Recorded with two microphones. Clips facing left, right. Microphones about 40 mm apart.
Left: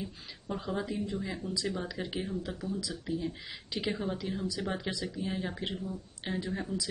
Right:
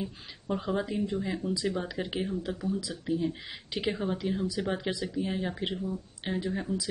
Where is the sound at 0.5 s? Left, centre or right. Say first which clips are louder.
Right 4 dB; centre.